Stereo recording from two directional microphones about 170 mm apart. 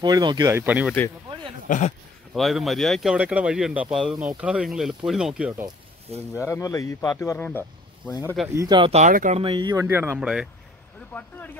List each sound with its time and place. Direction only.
0.0 s speech: 25° right (ahead or behind); by 0.9 s 10° right (ahead or behind)
1.7 s speech: 45° left (ahead or behind)
2.3 s speech: centre (ahead or behind)
6.3 s speech: 15° left (ahead or behind)
8.5 s speech: 25° right (ahead or behind)
8.9 s speech: 45° right (ahead or behind)
9.4 s speech: 25° right (ahead or behind)
9.8 s speech: 10° right (ahead or behind)
11.1 s speech: 10° left (ahead or behind)